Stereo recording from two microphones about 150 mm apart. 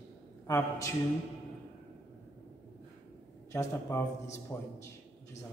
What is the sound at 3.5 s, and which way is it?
A man's voice, 20° left (ahead or behind).